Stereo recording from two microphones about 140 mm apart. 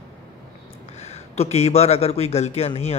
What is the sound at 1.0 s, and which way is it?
A man's voice, 50° left (ahead or behind).